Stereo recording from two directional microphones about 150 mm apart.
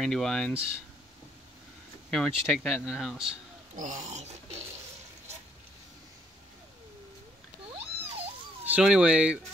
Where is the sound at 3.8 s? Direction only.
55° right (ahead or behind).